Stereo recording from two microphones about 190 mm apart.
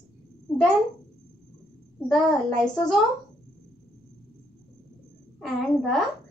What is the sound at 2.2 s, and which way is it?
Speech, centre (ahead or behind).